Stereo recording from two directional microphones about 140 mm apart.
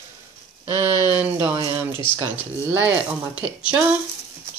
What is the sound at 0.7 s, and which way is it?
Speech, 20° right (ahead or behind).